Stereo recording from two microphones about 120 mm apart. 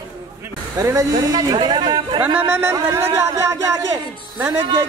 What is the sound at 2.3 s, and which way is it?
Speech, 20° right (ahead or behind).